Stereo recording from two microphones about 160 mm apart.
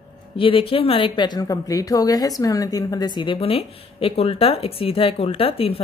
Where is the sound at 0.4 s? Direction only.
35° left (ahead or behind).